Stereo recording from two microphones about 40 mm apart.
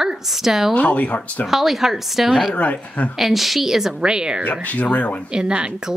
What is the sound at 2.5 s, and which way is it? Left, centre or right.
Speech, left.